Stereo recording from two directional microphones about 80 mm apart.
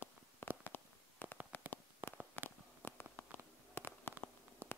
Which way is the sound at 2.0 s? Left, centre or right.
Right.